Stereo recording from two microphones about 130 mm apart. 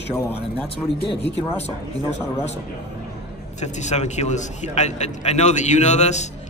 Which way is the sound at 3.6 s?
65° left (ahead or behind).